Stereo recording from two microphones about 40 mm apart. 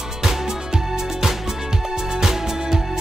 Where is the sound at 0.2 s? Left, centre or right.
Centre.